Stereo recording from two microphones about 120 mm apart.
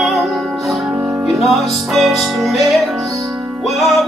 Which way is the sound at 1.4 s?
Centre (ahead or behind).